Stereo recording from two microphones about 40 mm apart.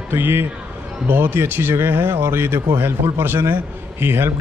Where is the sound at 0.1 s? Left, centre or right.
Right.